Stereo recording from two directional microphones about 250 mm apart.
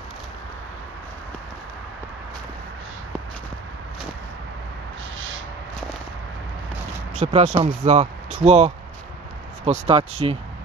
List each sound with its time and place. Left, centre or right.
7.2 s speech: right